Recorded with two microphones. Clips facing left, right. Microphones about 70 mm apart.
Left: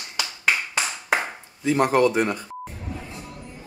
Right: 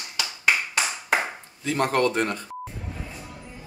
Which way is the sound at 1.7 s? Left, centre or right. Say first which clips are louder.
Left 4 dB; centre.